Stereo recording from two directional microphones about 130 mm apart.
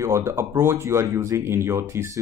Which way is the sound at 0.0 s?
20° right (ahead or behind).